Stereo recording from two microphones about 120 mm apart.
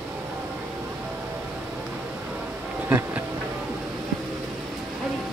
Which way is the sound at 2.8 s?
15° right (ahead or behind).